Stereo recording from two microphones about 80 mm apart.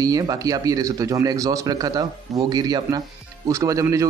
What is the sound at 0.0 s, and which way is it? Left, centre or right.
A man's voice, right.